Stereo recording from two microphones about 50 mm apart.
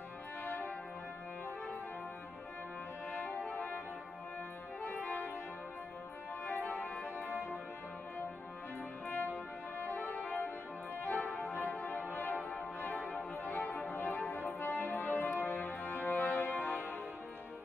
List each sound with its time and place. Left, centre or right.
3.2 s music: left
4.8 s music: left
6.4 s music: left
9.0 s brass instrument: left
11.0 s music: left